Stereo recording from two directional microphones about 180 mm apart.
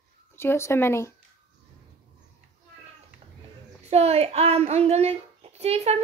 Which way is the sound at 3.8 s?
35° right (ahead or behind).